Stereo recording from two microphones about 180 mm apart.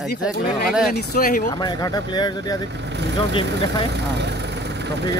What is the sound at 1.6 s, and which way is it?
Speech, 25° left (ahead or behind).